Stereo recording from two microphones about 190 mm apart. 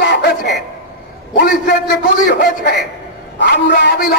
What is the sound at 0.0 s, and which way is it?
Chuckle, 60° left (ahead or behind).